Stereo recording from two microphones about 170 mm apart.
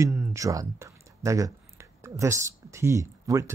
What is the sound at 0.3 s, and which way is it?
Speech, 20° right (ahead or behind).